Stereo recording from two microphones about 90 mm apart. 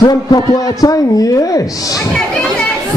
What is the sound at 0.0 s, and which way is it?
A man's voice, 50° left (ahead or behind).